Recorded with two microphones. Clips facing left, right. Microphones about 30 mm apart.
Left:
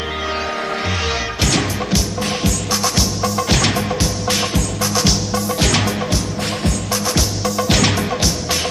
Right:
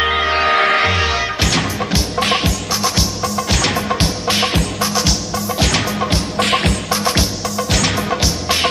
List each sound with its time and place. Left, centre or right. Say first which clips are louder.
0.0 s music: right 7 dB; right
0.5 s music: right 9 dB; right
1.0 s music: right 2 dB; centre
2.1 s music: right 5 dB; right
2.7 s music: even; centre
4.5 s music: right 2 dB; right
4.9 s music: left 1 dB; centre
6.3 s music: right 6 dB; right
7.4 s music: left 2 dB; centre
7.9 s music: right 1 dB; centre